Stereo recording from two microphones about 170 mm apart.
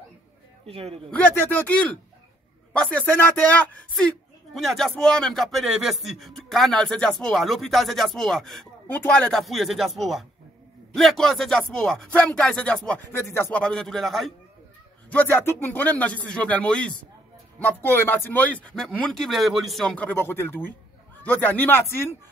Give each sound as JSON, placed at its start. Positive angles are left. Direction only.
{"t": 0.7, "sound": "speech", "side_deg": -35}
{"t": 1.1, "sound": "speech", "side_deg": 10}